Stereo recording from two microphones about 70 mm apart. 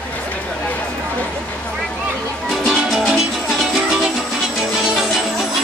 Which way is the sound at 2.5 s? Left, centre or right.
Centre.